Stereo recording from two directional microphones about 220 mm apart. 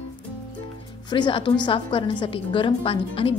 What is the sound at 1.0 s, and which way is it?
A woman's voice, 20° left (ahead or behind).